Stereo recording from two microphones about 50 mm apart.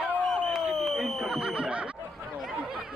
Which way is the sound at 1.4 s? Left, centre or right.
Centre.